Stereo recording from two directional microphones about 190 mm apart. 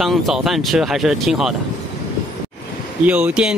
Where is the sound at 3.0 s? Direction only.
5° right (ahead or behind).